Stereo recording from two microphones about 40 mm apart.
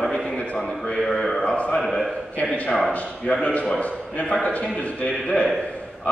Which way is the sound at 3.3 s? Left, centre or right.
Centre.